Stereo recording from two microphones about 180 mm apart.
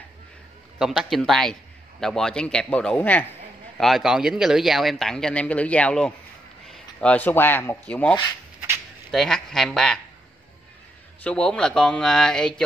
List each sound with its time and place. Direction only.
0.7 s a man's voice: centre (ahead or behind)
11.2 s a man's voice: 5° left (ahead or behind)